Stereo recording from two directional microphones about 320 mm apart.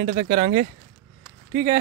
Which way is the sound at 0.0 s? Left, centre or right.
Right.